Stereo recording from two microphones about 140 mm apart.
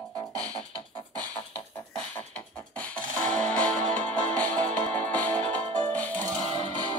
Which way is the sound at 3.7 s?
60° right (ahead or behind).